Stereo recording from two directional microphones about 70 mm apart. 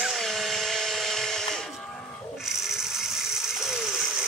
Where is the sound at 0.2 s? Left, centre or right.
Centre.